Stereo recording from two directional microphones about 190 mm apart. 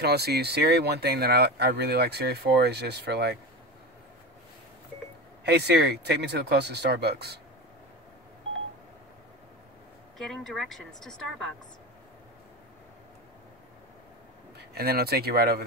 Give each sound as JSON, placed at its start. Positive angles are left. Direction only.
{"t": 0.0, "sound": "speech", "side_deg": -60}
{"t": 5.4, "sound": "speech", "side_deg": -60}
{"t": 10.1, "sound": "speech", "side_deg": 0}
{"t": 14.6, "sound": "speech", "side_deg": -55}